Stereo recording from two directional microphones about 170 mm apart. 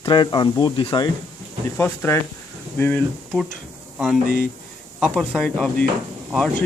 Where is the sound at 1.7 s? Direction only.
15° left (ahead or behind).